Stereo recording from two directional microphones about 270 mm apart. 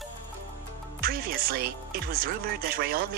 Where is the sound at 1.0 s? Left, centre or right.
Right.